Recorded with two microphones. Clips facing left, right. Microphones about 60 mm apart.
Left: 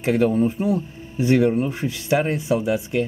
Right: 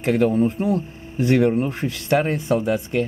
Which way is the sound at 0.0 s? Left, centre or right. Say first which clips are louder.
Even; centre.